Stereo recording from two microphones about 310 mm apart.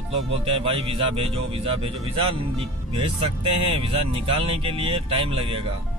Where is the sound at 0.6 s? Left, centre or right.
Centre.